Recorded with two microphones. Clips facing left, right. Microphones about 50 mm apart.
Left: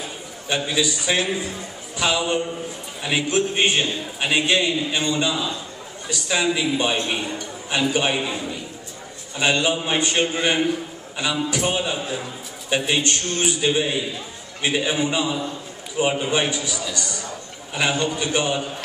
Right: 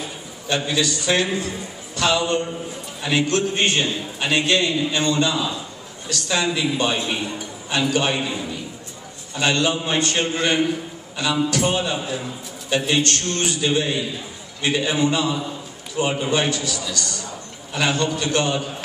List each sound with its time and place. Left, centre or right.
0.7 s a man's voice: centre
9.4 s a man's voice: centre